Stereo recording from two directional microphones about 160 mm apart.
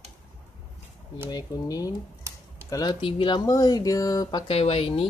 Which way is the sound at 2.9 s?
35° left (ahead or behind).